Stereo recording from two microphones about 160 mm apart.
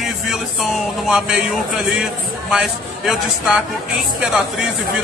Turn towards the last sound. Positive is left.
turn(degrees=-5)  # may be behind; listen again after turning